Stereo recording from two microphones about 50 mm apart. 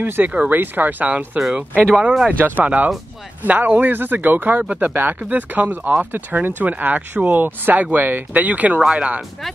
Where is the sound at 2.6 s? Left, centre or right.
Right.